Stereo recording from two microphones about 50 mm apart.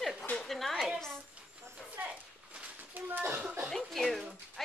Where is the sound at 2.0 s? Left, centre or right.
Right.